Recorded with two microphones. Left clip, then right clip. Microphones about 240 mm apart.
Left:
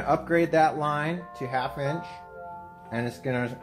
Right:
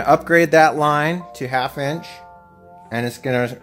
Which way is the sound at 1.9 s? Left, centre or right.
Centre.